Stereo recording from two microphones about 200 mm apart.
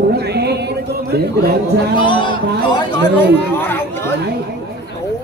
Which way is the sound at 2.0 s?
25° left (ahead or behind).